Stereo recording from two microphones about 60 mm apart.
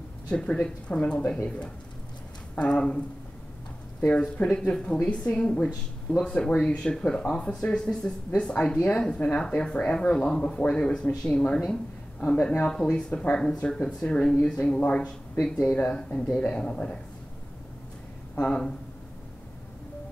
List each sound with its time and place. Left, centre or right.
0.3 s speech: centre
4.1 s a woman's voice: left
18.3 s speech: centre